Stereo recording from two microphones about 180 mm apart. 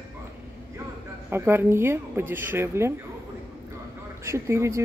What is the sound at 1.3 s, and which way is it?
Speech, 10° right (ahead or behind).